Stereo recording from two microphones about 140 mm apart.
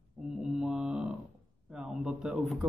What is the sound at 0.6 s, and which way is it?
A man's voice, 5° right (ahead or behind).